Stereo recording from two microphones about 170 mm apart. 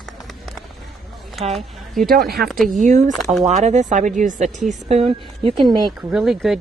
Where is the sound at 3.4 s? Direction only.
45° right (ahead or behind).